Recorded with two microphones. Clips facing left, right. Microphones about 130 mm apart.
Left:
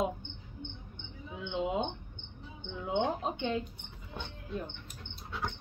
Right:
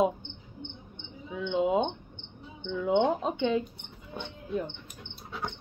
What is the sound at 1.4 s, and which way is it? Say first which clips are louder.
Speech: right 7 dB; 60° right (ahead or behind).